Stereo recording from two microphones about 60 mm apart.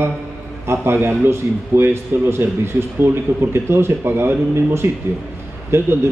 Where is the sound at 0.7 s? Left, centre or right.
Right.